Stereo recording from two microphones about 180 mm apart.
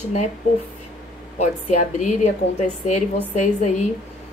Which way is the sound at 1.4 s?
40° left (ahead or behind).